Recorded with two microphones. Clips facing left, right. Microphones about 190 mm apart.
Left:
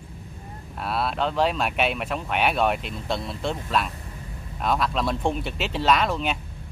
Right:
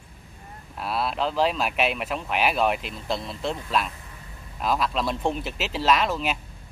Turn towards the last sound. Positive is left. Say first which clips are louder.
# left 1 dB
turn(degrees=0)  # may be behind; listen again after turning